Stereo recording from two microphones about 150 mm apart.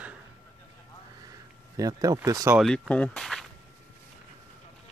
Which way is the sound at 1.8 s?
25° right (ahead or behind).